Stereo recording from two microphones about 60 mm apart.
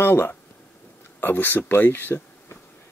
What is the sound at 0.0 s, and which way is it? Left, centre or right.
Speech, left.